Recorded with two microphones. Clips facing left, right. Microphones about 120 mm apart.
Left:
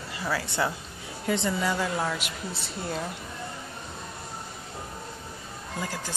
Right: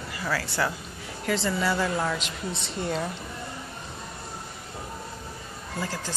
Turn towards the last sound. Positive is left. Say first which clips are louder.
# right 1 dB
turn(degrees=15)  # may be behind; listen again after turning